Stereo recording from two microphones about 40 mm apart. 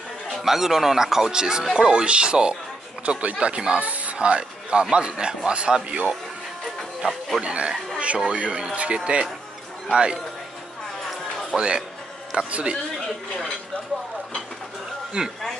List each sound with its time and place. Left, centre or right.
0.3 s speech: centre; by 2.5 s right
3.1 s speech: right
3.3 s speech: right
3.8 s a sound: right
4.3 s speech: right
7.1 s speech: centre
7.4 s speech: right
11.5 s speech: right
15.2 s speech: right